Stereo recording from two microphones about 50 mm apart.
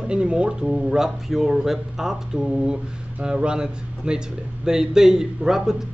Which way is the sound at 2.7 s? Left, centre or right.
Centre.